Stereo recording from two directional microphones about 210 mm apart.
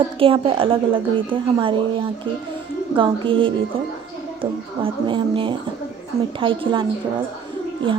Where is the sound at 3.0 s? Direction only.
25° right (ahead or behind).